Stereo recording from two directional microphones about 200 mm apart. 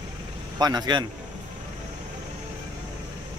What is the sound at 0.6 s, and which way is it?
Speech, 20° right (ahead or behind).